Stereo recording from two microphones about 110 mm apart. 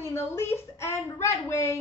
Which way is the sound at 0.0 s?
25° left (ahead or behind).